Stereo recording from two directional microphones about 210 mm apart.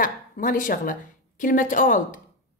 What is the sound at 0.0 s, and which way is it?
A woman's voice, 40° left (ahead or behind).